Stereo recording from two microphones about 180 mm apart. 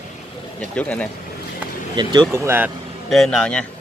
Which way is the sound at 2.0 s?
25° right (ahead or behind).